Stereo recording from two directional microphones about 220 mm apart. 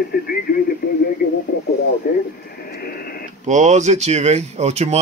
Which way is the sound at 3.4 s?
35° right (ahead or behind).